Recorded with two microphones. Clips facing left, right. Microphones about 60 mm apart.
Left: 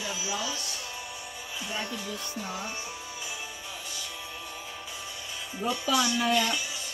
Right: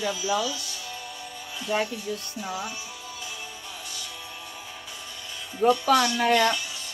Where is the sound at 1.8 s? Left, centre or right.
Left.